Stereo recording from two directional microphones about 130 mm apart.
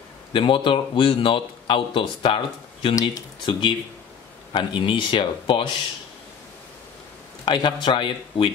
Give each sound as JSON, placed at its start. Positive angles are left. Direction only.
{"t": 0.3, "sound": "a man's voice", "side_deg": 40}
{"t": 7.4, "sound": "a man's voice", "side_deg": 35}